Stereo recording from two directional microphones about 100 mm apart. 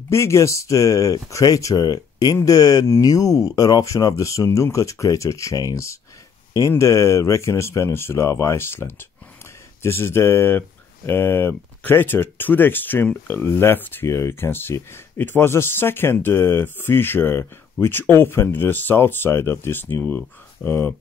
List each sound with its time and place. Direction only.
0.1 s speech: 30° left (ahead or behind)